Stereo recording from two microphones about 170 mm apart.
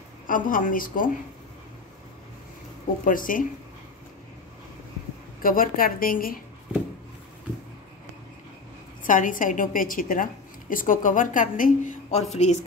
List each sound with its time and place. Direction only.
0.3 s a woman's voice: 55° left (ahead or behind)
3.1 s a woman's voice: 55° left (ahead or behind)
5.4 s a woman's voice: 55° left (ahead or behind)
9.0 s a woman's voice: 50° left (ahead or behind)